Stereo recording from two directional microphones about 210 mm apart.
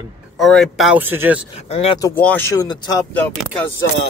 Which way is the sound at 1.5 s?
30° left (ahead or behind).